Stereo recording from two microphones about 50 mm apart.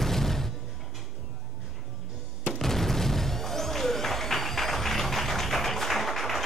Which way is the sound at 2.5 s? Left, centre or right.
Centre.